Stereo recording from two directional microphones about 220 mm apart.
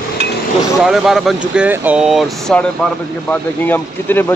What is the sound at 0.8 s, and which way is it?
Speech, centre (ahead or behind).